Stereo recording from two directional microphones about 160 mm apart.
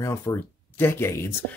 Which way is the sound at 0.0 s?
15° left (ahead or behind).